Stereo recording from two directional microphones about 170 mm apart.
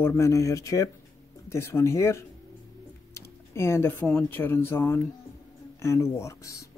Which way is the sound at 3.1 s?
15° left (ahead or behind).